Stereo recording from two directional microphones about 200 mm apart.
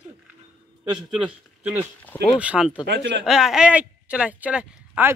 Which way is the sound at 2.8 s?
60° right (ahead or behind).